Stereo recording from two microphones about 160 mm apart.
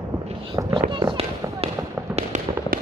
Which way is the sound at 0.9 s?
30° right (ahead or behind).